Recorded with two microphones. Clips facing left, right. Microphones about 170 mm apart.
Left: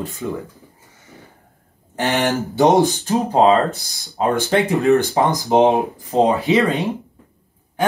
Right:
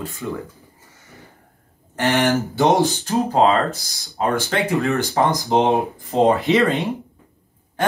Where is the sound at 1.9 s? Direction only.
20° left (ahead or behind).